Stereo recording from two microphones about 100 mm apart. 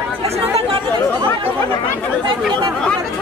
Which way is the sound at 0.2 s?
80° right.